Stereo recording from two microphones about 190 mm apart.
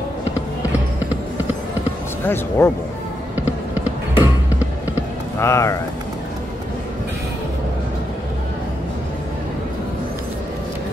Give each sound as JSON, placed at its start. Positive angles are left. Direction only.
{"t": 2.2, "sound": "speech", "side_deg": 10}
{"t": 3.7, "sound": "a sound", "side_deg": -10}
{"t": 5.4, "sound": "speech", "side_deg": 15}